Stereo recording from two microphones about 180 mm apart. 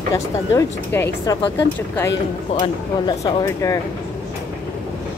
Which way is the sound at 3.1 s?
20° left (ahead or behind).